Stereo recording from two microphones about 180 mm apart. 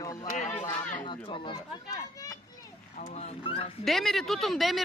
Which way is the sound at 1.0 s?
25° left (ahead or behind).